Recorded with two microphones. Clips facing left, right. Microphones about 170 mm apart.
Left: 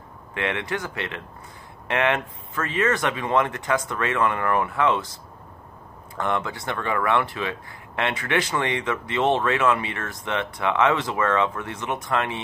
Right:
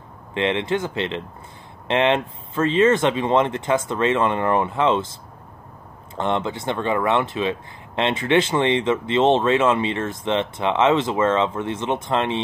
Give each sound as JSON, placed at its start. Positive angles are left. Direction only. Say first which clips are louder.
{"t": 0.3, "sound": "speech", "louder": "right 6 dB", "side_deg": -25}
{"t": 6.1, "sound": "speech", "louder": "right 3 dB", "side_deg": -25}